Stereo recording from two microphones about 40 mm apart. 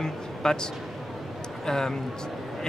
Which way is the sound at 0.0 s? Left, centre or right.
Centre.